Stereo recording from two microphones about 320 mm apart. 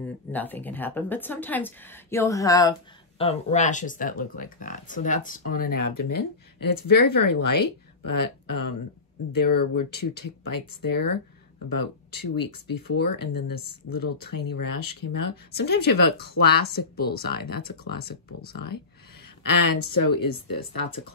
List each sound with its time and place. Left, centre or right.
0.0 s speech: centre; by 5.7 s left
5.7 s speech: left
16.2 s speech: left
19.4 s speech: left